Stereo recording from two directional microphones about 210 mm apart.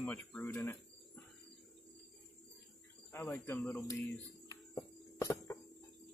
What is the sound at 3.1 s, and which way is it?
Speech, 15° left (ahead or behind).